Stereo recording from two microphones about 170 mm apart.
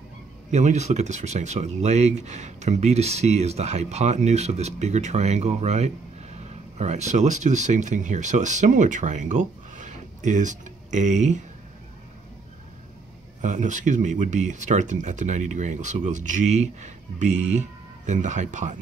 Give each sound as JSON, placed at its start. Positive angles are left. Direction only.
{"t": 0.5, "sound": "speech", "side_deg": -45}
{"t": 13.4, "sound": "speech", "side_deg": -45}